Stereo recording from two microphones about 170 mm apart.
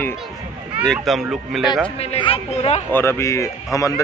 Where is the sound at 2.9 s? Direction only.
15° left (ahead or behind).